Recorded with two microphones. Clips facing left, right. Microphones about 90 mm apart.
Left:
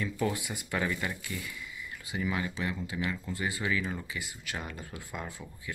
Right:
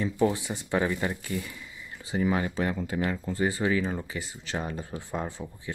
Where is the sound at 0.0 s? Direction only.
30° right (ahead or behind).